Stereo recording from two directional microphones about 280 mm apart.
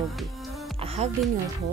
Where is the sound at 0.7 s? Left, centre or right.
Right.